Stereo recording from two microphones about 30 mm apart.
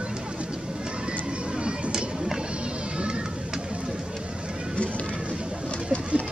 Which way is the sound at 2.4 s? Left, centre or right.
Right.